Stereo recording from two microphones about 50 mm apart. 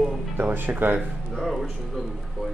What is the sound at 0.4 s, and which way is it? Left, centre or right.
Speech, right.